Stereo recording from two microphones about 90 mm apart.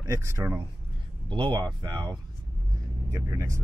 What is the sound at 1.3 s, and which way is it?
Speech, 60° right (ahead or behind).